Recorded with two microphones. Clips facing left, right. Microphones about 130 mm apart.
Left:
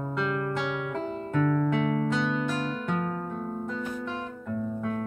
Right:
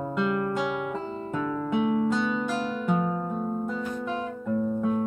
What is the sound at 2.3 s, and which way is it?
Guitar, 10° right (ahead or behind).